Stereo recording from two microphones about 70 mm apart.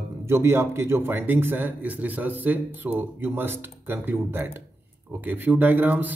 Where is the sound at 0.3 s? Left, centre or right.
Right.